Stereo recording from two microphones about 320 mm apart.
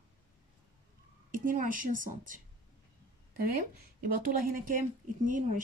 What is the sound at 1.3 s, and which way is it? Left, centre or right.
Speech, right.